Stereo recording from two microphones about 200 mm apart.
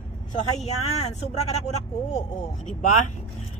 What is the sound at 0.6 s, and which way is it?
Speech, 30° left (ahead or behind).